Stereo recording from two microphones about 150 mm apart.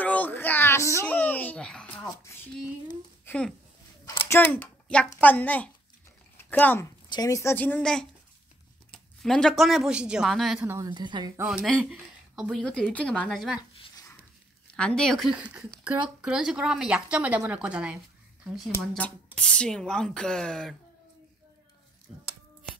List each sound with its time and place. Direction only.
0.0 s a sound: 10° left (ahead or behind)
3.3 s speech: 5° left (ahead or behind)
7.1 s speech: 25° left (ahead or behind); by 8.1 s 5° left (ahead or behind)
9.2 s a woman's voice: 5° left (ahead or behind)
10.6 s speech: 15° right (ahead or behind)
10.9 s a woman's voice: 30° right (ahead or behind)
11.4 s a woman's voice: centre (ahead or behind)
13.6 s a sound: 25° left (ahead or behind)
14.7 s a woman's voice: 5° left (ahead or behind)